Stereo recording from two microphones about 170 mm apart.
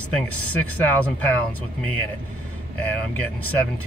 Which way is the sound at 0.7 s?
10° left (ahead or behind).